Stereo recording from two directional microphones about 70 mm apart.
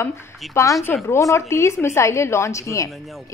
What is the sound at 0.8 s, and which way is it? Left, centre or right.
A woman's voice, left.